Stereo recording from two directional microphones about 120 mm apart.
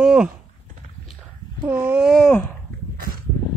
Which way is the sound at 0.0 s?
5° right (ahead or behind).